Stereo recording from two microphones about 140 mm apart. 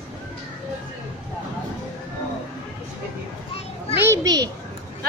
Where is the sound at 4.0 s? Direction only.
25° right (ahead or behind).